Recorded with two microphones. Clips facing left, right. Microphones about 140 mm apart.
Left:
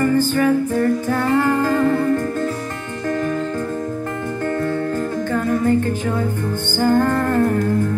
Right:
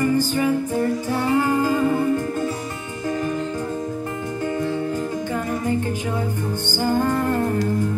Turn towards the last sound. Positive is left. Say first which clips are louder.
# left 3 dB
turn(degrees=55)  # may be behind; listen again after turning